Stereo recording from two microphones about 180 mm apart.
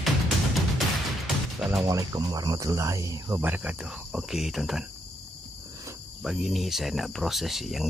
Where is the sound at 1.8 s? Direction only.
20° right (ahead or behind); by 4.8 s centre (ahead or behind).